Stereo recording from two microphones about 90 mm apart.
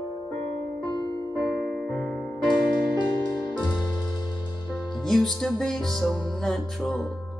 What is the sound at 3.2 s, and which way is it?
Music, 55° left (ahead or behind).